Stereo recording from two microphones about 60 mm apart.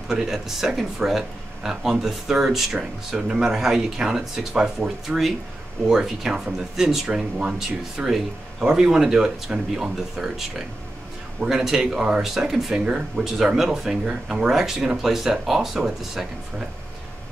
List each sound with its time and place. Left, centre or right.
0.1 s speech: centre
11.4 s speech: centre